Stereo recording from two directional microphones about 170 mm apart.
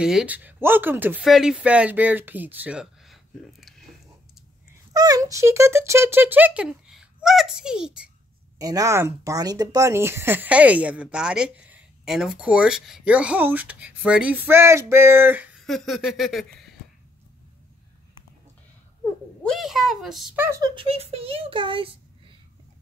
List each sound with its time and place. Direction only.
0.0 s speech: 5° right (ahead or behind)
4.9 s speech: 20° right (ahead or behind); by 8.1 s 5° right (ahead or behind)
8.5 s speech: 20° right (ahead or behind)
15.6 s a sound: centre (ahead or behind)
19.4 s a sound: centre (ahead or behind)
20.3 s speech: 15° right (ahead or behind)
20.7 s speech: 35° right (ahead or behind)